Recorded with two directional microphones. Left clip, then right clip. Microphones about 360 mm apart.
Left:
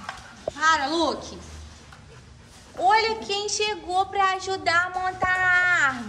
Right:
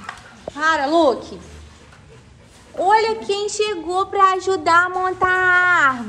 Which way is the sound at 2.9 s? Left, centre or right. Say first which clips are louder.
Right 5 dB; centre.